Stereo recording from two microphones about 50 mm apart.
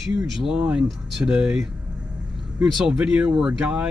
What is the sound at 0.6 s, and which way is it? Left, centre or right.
Speech, centre.